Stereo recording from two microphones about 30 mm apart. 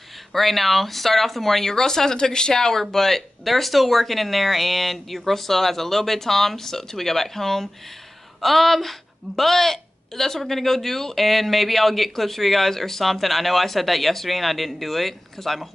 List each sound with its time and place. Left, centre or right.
0.3 s speech: centre
1.7 s speech: centre
2.7 s speech: centre